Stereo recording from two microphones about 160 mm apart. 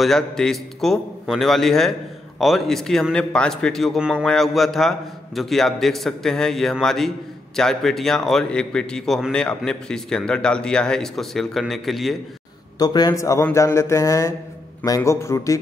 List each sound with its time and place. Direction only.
0.0 s a man's voice: centre (ahead or behind)
12.7 s a man's voice: 25° left (ahead or behind)